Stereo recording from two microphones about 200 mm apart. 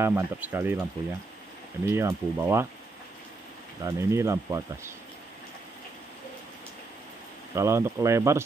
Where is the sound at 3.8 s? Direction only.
15° right (ahead or behind).